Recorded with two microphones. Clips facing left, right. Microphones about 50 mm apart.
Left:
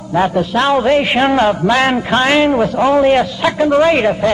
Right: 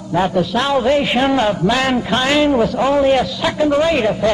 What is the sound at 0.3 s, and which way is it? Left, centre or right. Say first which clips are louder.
A man's voice: left 3 dB; left.